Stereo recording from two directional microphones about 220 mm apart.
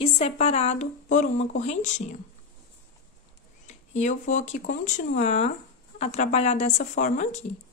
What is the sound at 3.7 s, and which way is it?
Speech, 35° left (ahead or behind).